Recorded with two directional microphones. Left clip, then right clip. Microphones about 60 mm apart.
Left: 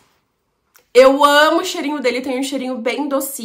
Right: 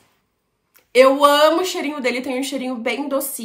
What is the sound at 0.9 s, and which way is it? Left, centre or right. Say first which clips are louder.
Speech: left 3 dB; left.